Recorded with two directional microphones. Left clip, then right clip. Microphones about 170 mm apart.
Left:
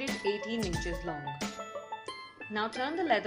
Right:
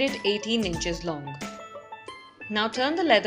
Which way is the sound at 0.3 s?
30° right (ahead or behind).